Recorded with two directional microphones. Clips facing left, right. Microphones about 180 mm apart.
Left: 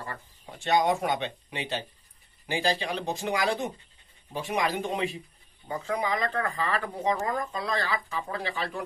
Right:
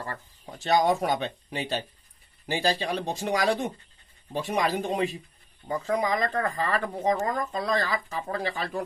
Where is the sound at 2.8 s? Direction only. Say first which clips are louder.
Right 2 dB; 40° right (ahead or behind).